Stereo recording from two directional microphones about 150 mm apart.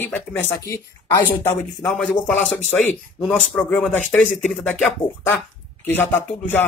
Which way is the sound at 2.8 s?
10° left (ahead or behind).